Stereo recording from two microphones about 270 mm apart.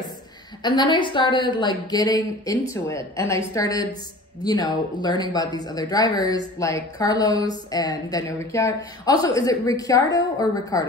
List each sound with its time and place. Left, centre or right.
0.6 s speech: centre